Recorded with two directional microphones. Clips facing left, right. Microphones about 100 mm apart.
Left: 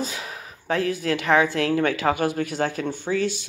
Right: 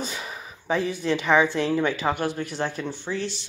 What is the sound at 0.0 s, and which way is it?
Speech, centre (ahead or behind).